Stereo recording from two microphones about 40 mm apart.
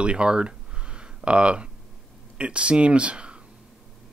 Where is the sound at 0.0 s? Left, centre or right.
Right.